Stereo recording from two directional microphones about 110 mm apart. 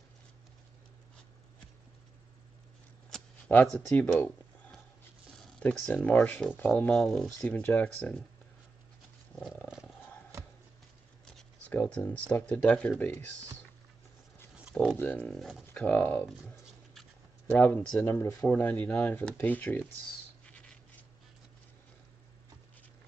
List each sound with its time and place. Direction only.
3.1 s shuffling cards: 5° left (ahead or behind)
3.4 s speech: 15° left (ahead or behind)
5.4 s speech: 10° left (ahead or behind)
7.4 s speech: 15° left (ahead or behind)
11.7 s speech: 15° left (ahead or behind)
15.0 s speech: 10° left (ahead or behind)
17.5 s speech: 15° left (ahead or behind)